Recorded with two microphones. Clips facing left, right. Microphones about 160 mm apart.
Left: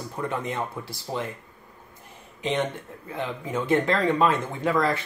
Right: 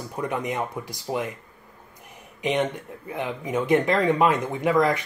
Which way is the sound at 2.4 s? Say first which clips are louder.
Right 2 dB; 15° right (ahead or behind).